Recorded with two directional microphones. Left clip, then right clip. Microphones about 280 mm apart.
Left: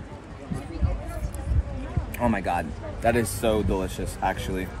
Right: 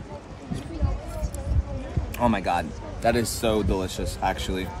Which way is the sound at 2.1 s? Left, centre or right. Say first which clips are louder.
Right 2 dB; centre.